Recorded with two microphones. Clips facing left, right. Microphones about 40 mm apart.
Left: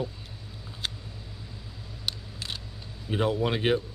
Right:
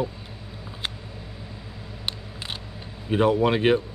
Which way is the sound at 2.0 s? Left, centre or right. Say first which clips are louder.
Right 2 dB; right.